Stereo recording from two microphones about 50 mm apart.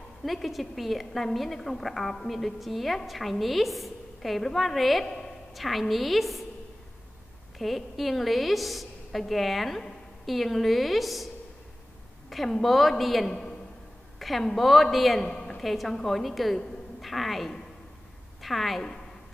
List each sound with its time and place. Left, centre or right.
0.2 s a woman's voice: centre
7.5 s a woman's voice: centre
12.3 s a woman's voice: centre
15.2 s a sound: centre
15.6 s a woman's voice: centre